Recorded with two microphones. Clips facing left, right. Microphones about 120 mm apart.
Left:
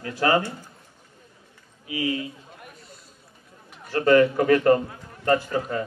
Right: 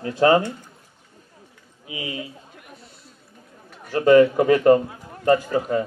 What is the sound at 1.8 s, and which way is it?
Speech, 20° right (ahead or behind).